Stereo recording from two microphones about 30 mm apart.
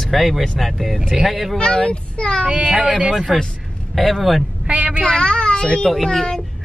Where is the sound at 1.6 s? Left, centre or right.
Left.